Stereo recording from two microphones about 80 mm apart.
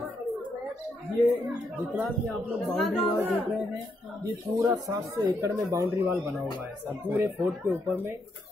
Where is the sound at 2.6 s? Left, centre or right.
Centre.